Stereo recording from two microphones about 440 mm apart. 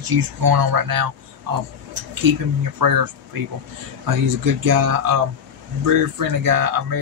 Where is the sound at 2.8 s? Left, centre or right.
Right.